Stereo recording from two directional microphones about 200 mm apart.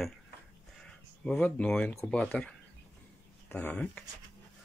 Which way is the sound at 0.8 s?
5° left (ahead or behind).